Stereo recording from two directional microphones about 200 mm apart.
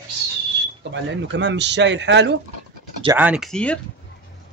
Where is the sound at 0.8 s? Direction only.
60° right (ahead or behind).